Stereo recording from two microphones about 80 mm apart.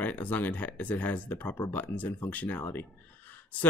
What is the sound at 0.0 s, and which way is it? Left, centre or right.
A man's voice, centre.